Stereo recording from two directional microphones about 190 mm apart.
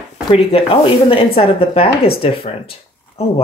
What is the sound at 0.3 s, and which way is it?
Speech, 30° left (ahead or behind).